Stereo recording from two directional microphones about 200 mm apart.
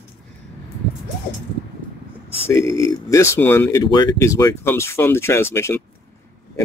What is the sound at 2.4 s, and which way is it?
Speech, 15° left (ahead or behind).